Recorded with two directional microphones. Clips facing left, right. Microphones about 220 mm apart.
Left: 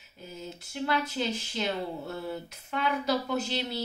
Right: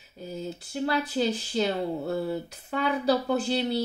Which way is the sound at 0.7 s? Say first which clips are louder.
Right 3 dB; 35° right (ahead or behind).